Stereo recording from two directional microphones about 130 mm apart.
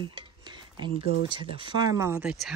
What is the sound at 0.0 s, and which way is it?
Speech, 35° right (ahead or behind).